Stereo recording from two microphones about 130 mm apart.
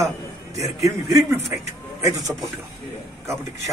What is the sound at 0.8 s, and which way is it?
Speech, 25° right (ahead or behind).